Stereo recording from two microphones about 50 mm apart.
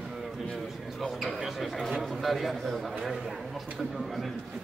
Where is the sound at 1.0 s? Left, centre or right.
Centre.